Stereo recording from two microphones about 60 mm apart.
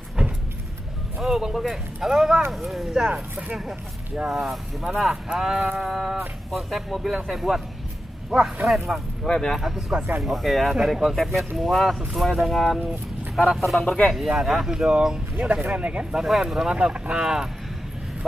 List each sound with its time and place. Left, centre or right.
0.2 s vehicle: centre
1.2 s speech: centre
3.1 s speech: right
4.3 s speech: centre
15.3 s speech: right
16.1 s speech: centre